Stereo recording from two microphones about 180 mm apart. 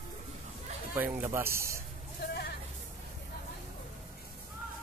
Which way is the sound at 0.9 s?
10° right (ahead or behind).